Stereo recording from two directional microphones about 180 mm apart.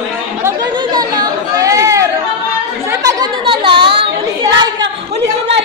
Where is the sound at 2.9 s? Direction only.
20° right (ahead or behind).